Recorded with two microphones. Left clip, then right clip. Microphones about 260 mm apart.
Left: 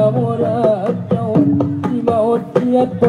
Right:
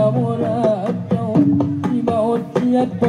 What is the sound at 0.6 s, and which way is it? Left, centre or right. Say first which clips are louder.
Music: left 3 dB; right.